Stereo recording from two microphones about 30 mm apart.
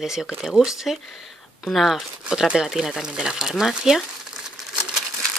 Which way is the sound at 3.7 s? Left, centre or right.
Centre.